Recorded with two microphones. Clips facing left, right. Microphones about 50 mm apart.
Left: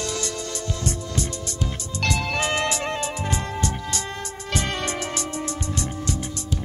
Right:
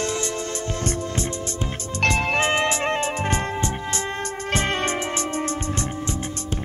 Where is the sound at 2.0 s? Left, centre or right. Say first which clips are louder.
Right 4 dB; right.